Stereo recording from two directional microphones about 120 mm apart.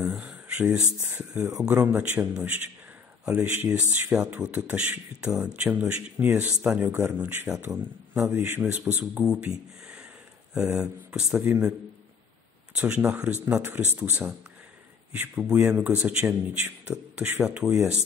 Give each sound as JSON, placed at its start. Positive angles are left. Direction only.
{"t": 0.0, "sound": "a sound", "side_deg": -10}
{"t": 1.0, "sound": "speech", "side_deg": -15}
{"t": 10.5, "sound": "speech", "side_deg": -10}
{"t": 12.7, "sound": "speech", "side_deg": -10}